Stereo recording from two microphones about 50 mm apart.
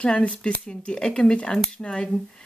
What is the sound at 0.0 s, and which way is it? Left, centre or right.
Speech, left.